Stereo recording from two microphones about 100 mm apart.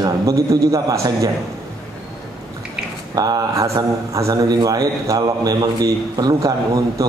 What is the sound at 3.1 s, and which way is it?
A man's voice, 40° right (ahead or behind).